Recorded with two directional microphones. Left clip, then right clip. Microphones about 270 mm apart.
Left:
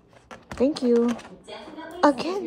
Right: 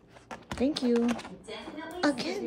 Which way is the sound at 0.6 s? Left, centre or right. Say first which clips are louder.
Left 6 dB; centre.